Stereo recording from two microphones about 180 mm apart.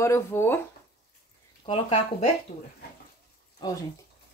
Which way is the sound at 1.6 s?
30° left (ahead or behind).